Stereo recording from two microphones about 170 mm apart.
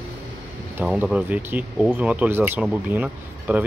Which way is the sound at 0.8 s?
5° right (ahead or behind).